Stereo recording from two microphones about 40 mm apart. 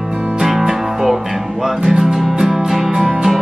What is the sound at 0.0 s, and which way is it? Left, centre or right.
Music, centre.